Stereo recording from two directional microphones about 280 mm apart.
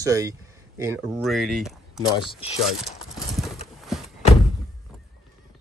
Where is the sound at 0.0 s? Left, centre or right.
Centre.